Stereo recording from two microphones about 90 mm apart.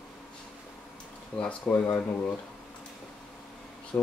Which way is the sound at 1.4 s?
15° left (ahead or behind).